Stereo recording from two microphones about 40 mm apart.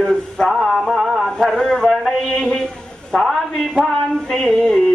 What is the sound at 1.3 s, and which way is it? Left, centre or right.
A man's voice, centre.